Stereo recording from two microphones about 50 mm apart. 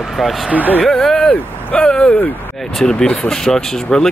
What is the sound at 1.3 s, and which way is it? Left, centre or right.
Speech, left.